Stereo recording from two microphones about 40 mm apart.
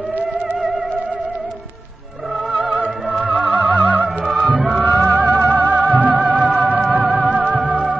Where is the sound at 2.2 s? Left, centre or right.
Centre.